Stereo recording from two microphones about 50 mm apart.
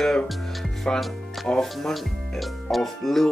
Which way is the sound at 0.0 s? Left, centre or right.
Centre.